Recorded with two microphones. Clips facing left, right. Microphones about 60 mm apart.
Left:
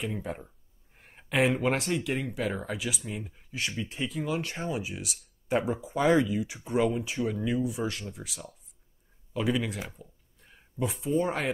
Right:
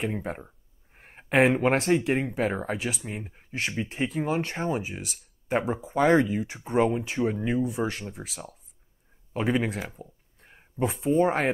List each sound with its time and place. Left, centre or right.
0.0 s speech: right